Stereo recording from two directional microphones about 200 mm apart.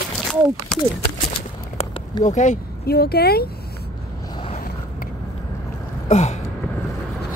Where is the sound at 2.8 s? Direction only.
50° left (ahead or behind).